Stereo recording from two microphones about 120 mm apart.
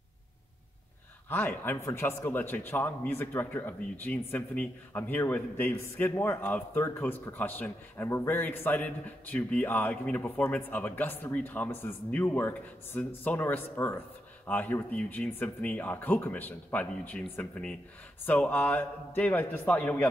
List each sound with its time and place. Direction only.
1.3 s speech: 15° left (ahead or behind)